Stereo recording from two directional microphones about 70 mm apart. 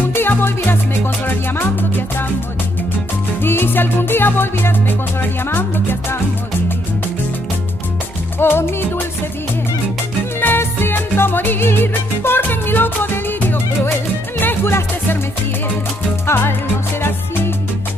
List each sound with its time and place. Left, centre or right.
0.1 s music: left
3.4 s music: left
8.4 s music: left
10.4 s music: left
16.3 s music: left